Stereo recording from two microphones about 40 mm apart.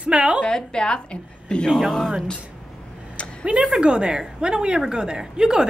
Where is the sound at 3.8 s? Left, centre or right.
Right.